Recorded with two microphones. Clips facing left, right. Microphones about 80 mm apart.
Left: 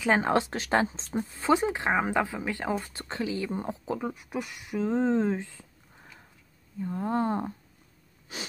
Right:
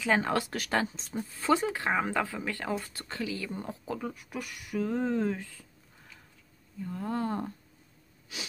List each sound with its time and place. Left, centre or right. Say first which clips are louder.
0.0 s speech: left 3 dB; left